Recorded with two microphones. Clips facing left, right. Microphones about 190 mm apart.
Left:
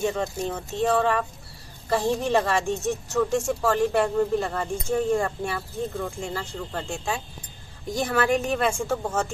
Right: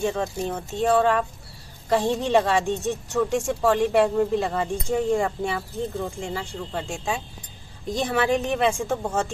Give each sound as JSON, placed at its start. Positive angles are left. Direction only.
{"t": 0.0, "sound": "a woman's voice", "side_deg": -15}